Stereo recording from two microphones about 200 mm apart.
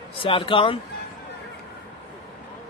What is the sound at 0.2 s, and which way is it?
Speech, 25° left (ahead or behind).